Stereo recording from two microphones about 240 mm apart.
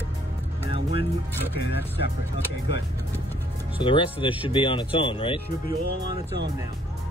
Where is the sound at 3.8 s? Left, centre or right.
Left.